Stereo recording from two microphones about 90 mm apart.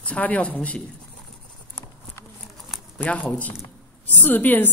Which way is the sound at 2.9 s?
20° left (ahead or behind).